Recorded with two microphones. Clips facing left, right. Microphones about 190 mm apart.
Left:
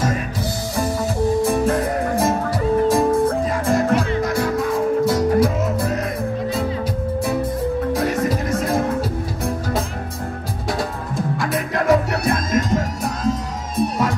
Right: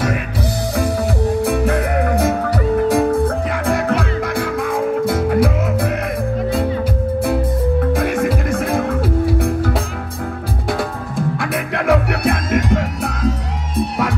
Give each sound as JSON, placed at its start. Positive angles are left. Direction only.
{"t": 0.7, "sound": "music", "side_deg": -65}
{"t": 7.9, "sound": "music", "side_deg": -60}
{"t": 11.3, "sound": "music", "side_deg": -60}